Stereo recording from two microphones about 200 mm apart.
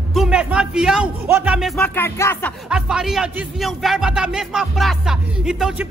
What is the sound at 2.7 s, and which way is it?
A man's voice, 5° right (ahead or behind).